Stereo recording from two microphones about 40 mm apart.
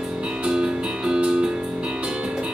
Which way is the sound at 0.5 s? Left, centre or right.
Centre.